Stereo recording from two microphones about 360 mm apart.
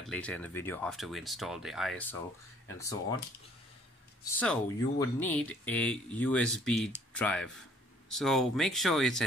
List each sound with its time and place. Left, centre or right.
0.0 s speech: centre
4.2 s speech: centre